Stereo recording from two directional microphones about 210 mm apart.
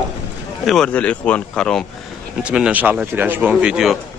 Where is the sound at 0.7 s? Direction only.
5° left (ahead or behind).